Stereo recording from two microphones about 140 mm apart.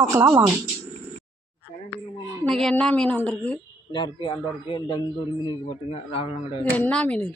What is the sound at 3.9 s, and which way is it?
A man's voice, 30° left (ahead or behind).